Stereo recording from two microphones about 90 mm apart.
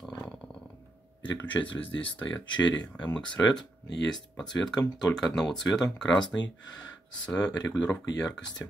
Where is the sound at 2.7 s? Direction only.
15° left (ahead or behind).